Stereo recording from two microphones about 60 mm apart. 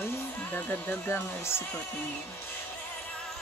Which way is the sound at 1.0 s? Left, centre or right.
Left.